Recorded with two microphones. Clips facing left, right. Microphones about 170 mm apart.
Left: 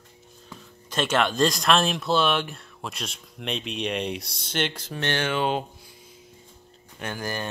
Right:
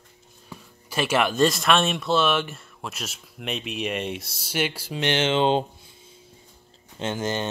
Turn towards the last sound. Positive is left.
turn(degrees=-20)  # may be behind; listen again after turning